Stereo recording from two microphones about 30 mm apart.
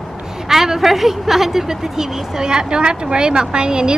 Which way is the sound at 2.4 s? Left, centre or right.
Right.